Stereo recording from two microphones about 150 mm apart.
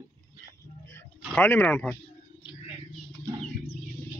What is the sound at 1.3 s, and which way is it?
Speech, 15° left (ahead or behind).